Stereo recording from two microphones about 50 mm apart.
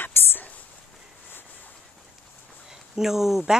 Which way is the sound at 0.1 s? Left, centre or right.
Left.